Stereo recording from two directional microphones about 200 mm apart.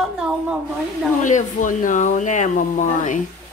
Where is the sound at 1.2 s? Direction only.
40° left (ahead or behind).